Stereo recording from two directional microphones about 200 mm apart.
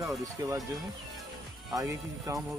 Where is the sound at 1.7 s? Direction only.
15° right (ahead or behind).